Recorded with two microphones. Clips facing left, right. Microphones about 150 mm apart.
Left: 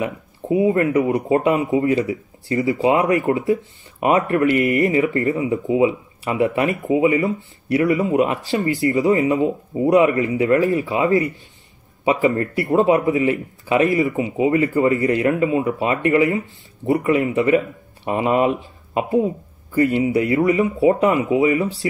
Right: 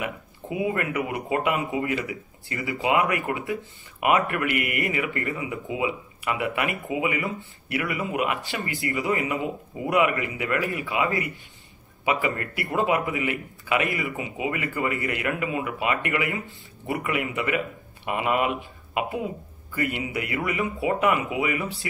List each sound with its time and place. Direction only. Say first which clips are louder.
0.0 s speech: left 7 dB; 30° left (ahead or behind)
20.4 s speech: left 8 dB; 25° left (ahead or behind)